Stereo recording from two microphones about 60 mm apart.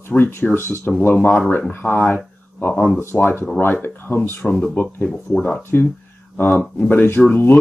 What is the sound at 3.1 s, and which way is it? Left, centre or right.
Speech, left.